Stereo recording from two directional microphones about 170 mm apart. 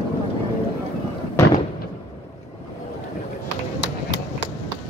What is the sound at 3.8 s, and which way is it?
Run, 90° left.